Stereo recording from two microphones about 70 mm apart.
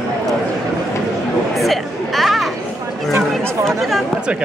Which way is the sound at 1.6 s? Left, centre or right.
Centre.